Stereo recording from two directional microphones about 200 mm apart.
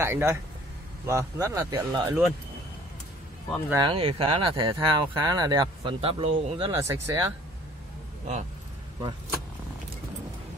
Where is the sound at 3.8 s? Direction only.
25° right (ahead or behind).